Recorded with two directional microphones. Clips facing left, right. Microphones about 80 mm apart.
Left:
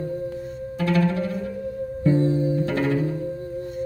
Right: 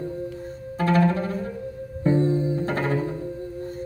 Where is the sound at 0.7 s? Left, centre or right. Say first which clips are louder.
Right 1 dB; right.